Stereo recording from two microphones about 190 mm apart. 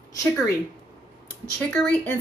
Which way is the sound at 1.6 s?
5° left (ahead or behind).